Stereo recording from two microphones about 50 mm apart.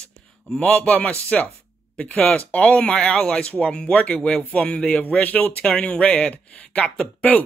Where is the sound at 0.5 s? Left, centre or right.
Left.